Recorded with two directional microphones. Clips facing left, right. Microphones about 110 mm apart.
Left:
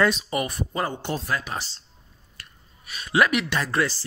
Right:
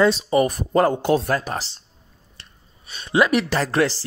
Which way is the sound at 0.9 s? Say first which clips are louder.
Right 10 dB; 65° right (ahead or behind).